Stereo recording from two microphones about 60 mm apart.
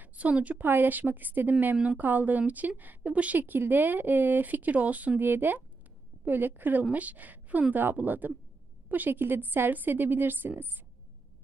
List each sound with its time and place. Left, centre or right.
0.0 s a woman's voice: right